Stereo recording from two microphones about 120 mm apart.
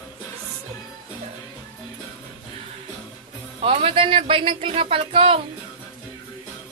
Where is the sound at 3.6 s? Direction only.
50° right (ahead or behind).